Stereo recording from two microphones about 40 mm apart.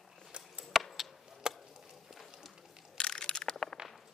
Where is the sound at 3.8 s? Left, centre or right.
Right.